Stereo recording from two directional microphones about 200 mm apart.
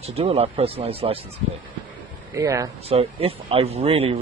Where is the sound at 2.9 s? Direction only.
30° right (ahead or behind).